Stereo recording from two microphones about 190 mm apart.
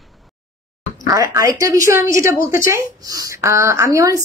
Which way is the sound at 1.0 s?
15° right (ahead or behind).